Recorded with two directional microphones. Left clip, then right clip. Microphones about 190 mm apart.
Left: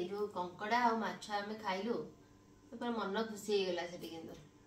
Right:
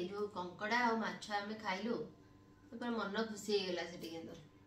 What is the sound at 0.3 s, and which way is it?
A woman's voice, 5° right (ahead or behind).